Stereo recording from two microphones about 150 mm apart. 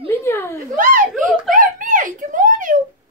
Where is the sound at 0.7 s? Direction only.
65° right (ahead or behind).